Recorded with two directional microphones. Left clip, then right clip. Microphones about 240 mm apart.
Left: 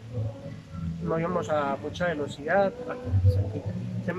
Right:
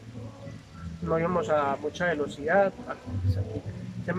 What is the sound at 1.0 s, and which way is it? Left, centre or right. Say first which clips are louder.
Speech: right 2 dB; centre.